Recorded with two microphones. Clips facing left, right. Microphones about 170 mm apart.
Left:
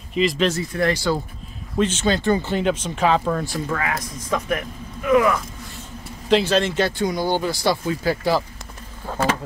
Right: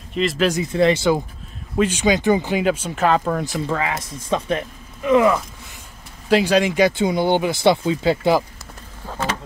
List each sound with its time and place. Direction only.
0.1 s speech: centre (ahead or behind)
0.5 s speech: 20° right (ahead or behind)
3.4 s speech: 20° right (ahead or behind)
6.2 s speech: 10° right (ahead or behind)
7.0 s speech: 25° right (ahead or behind)